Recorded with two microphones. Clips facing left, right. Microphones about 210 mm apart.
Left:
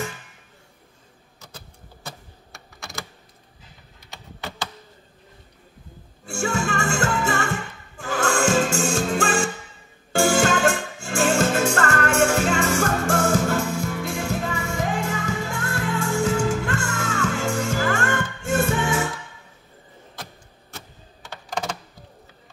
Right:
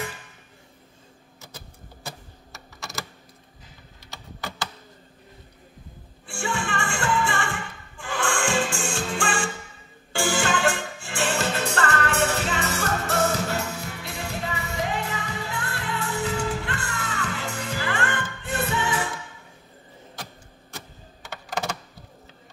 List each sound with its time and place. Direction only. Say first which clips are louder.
2.0 s typing: even; centre (ahead or behind)
6.2 s music: left 5 dB; 45° left (ahead or behind)
21.2 s computer keyboard: left 1 dB; 5° right (ahead or behind)